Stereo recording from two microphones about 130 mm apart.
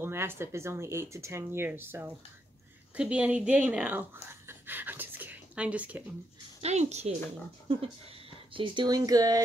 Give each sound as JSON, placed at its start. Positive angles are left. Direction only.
{"t": 0.0, "sound": "speech", "side_deg": -20}
{"t": 6.6, "sound": "a woman's voice", "side_deg": -60}
{"t": 7.6, "sound": "speech", "side_deg": -45}
{"t": 8.5, "sound": "speech", "side_deg": -35}